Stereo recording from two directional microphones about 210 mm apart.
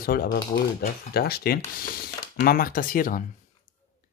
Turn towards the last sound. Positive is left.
turn(degrees=40)  # may be behind; listen again after turning